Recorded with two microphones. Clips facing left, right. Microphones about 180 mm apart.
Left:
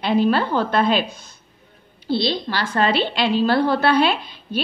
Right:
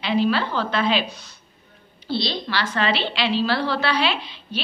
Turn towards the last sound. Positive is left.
turn(degrees=50)  # may be behind; listen again after turning